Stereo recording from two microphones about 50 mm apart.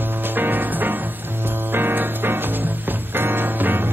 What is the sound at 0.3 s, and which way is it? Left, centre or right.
Music, right.